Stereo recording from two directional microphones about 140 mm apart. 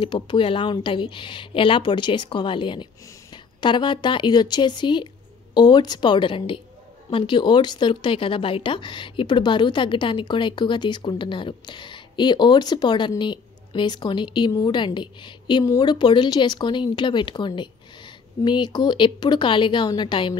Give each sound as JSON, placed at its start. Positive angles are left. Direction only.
{"t": 0.0, "sound": "a woman's voice", "side_deg": 35}